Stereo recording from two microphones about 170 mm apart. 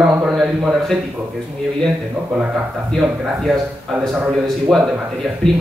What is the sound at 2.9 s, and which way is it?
A man's voice, centre (ahead or behind).